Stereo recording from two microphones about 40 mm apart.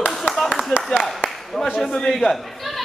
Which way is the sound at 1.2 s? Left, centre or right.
Centre.